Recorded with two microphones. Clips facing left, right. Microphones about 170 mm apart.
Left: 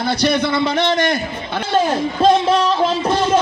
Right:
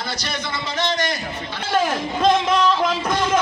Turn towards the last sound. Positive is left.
turn(degrees=30)  # may be behind; listen again after turning